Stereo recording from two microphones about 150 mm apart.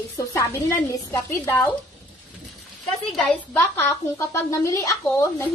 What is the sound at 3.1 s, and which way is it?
Speech, 5° left (ahead or behind).